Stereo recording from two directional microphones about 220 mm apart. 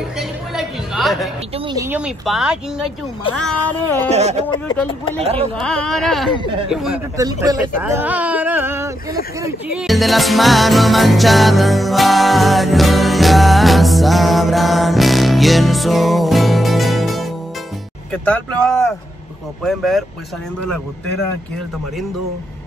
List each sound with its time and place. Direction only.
0.2 s chatter: centre (ahead or behind)
1.7 s speech: 10° right (ahead or behind)
4.1 s speech: 30° right (ahead or behind)
5.6 s speech: centre (ahead or behind)
7.2 s a sound: 15° right (ahead or behind)
9.8 s music: centre (ahead or behind)
18.1 s speech: 5° left (ahead or behind)